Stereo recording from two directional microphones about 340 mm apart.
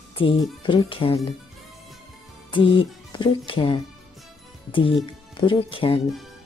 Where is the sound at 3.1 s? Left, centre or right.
Centre.